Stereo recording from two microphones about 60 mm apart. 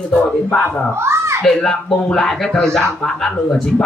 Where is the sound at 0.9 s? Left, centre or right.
Right.